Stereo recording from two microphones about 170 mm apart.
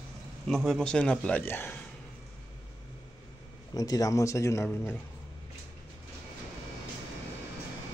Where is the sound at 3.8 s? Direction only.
20° left (ahead or behind).